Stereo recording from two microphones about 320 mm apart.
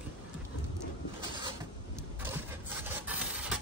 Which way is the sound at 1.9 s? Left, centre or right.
Centre.